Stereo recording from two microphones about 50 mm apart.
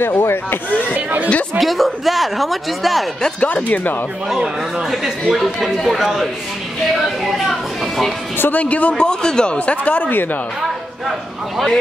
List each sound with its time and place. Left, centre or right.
0.0 s speech: left
0.9 s speech: right
1.6 s speech: centre
3.3 s speech: left
4.4 s speech: centre
6.9 s a sound: centre
8.4 s speech: left
8.9 s speech: centre
9.6 s speech: left